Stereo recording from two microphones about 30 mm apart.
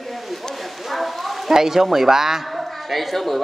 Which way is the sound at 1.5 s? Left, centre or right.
Centre.